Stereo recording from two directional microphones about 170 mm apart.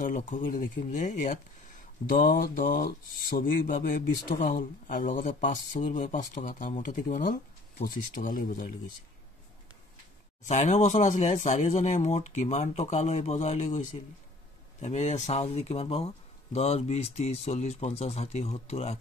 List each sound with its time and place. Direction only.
0.0 s speech: 50° left (ahead or behind)
10.4 s speech: 45° left (ahead or behind)